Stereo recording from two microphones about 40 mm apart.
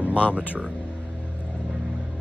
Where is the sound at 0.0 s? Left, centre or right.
Right.